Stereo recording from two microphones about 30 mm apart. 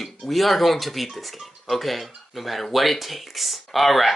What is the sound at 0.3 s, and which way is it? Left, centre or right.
Speech, centre.